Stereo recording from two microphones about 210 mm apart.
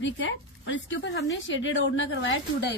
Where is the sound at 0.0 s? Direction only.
60° left (ahead or behind).